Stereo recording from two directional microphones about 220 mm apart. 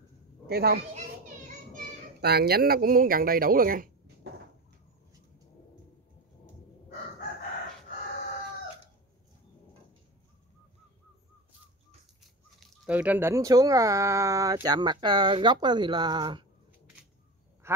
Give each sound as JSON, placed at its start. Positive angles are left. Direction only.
{"t": 0.5, "sound": "a child's voice", "side_deg": -45}
{"t": 2.2, "sound": "speech", "side_deg": -45}
{"t": 12.5, "sound": "speech", "side_deg": -5}
{"t": 17.6, "sound": "quack", "side_deg": -10}